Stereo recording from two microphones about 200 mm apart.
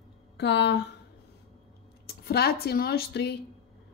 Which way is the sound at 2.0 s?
50° left (ahead or behind).